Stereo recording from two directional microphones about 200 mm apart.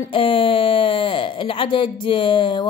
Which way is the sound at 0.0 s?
25° left (ahead or behind).